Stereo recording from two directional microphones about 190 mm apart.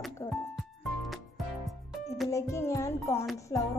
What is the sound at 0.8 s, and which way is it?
Music, centre (ahead or behind).